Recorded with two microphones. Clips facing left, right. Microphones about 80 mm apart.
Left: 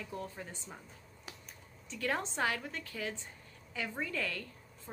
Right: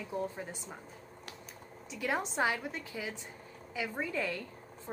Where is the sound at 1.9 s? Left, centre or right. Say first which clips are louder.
Right 2 dB; centre.